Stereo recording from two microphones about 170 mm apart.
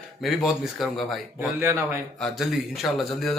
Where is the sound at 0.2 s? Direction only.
Centre (ahead or behind).